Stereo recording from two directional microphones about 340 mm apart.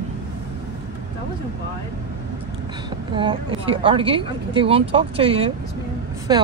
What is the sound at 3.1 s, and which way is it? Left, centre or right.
Speech, centre.